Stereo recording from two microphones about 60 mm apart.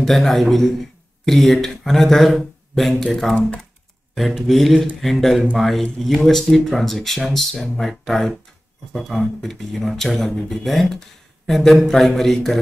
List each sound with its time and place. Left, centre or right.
0.0 s speech: centre
3.3 s speech: centre
4.1 s speech: centre